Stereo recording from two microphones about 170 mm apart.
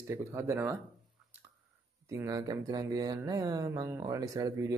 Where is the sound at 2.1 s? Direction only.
20° right (ahead or behind).